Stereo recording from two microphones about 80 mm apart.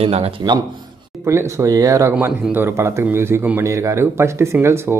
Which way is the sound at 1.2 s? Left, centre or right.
Right.